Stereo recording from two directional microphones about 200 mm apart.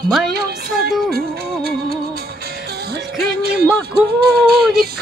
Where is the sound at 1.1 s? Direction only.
50° right (ahead or behind).